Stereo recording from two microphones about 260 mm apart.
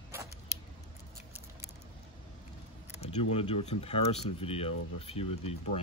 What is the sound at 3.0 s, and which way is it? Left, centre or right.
Speech, left.